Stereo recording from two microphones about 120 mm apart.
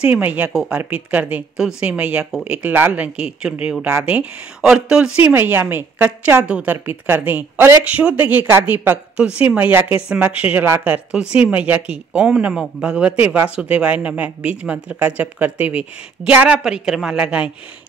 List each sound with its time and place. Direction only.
0.0 s speech: 15° right (ahead or behind)